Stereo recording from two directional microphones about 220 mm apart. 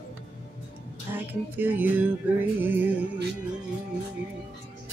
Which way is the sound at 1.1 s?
10° right (ahead or behind).